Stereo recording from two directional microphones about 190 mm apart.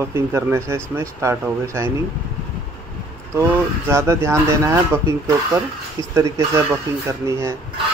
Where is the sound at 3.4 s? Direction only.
15° right (ahead or behind).